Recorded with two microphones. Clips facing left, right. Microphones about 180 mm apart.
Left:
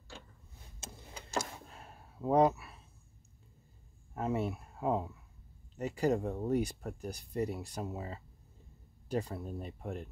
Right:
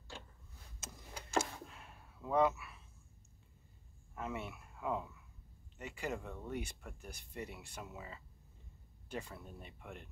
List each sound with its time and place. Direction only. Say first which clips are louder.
0.7 s power windows: left 2 dB; 30° left (ahead or behind)
4.1 s speech: left 9 dB; 35° left (ahead or behind)